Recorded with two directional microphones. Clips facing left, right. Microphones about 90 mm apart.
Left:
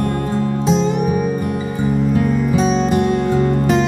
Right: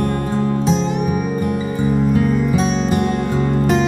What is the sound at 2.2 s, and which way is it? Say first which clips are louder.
Music: left 1 dB; centre (ahead or behind).